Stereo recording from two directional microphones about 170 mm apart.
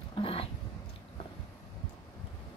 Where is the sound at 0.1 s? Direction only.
35° left (ahead or behind).